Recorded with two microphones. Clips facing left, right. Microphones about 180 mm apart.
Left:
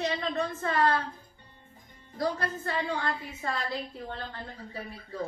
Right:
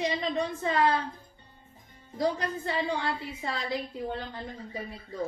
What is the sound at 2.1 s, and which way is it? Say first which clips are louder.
A woman's voice: right 2 dB; 15° right (ahead or behind).